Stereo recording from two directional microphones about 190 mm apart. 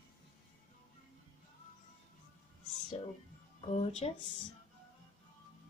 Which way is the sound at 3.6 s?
35° left (ahead or behind).